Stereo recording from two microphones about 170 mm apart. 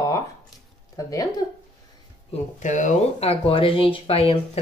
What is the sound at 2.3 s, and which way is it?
Speech, 45° left (ahead or behind).